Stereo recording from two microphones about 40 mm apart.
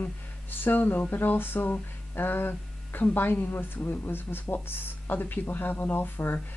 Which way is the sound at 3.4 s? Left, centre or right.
Left.